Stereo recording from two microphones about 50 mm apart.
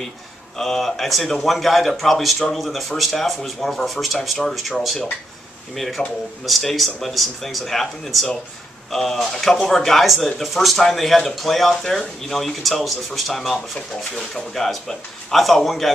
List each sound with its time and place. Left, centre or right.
0.6 s speech: centre
5.8 s speech: centre